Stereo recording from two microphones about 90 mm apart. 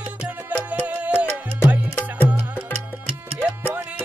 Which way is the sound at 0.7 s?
15° right (ahead or behind).